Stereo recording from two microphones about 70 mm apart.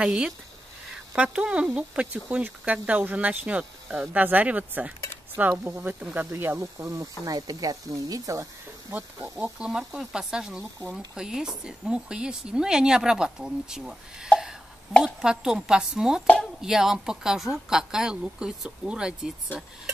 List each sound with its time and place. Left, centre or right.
0.0 s a woman's voice: centre; by 5.9 s right
6.3 s speech: right
7.2 s speech: right
8.9 s speech: right
9.6 s a woman's voice: centre
14.9 s a woman's voice: centre
15.1 s a woman's voice: centre